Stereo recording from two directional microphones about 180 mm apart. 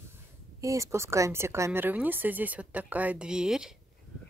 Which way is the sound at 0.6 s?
20° right (ahead or behind).